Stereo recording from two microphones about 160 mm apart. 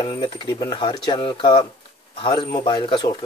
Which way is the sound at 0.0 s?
30° left (ahead or behind).